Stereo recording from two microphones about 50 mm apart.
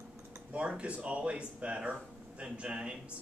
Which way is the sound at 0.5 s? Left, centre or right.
Right.